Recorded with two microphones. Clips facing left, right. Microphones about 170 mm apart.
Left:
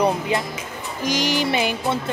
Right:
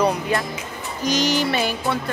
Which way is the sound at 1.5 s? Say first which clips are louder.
Left 1 dB; 15° left (ahead or behind).